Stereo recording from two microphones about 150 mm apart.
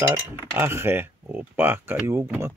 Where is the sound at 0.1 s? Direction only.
15° right (ahead or behind).